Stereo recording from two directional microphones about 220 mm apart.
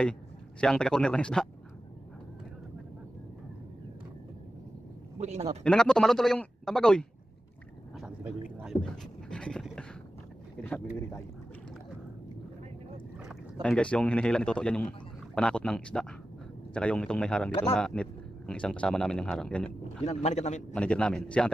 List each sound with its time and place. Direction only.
0.6 s speech: 5° left (ahead or behind)
5.2 s a man's voice: 30° right (ahead or behind)
5.6 s speech: 5° left (ahead or behind)
8.0 s pant: 5° right (ahead or behind)
10.6 s speech: 10° left (ahead or behind)
13.2 s speech: centre (ahead or behind)
20.0 s speech: 30° left (ahead or behind)
20.7 s speech: 5° left (ahead or behind)